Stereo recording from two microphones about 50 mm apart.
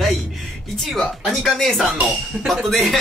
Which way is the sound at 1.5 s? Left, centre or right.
Centre.